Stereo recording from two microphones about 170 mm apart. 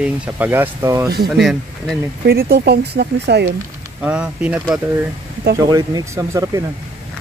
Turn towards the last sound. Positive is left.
turn(degrees=-20)  # may be behind; listen again after turning